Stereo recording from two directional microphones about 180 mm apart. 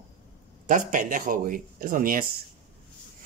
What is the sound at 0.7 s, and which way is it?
Speech, 45° right (ahead or behind).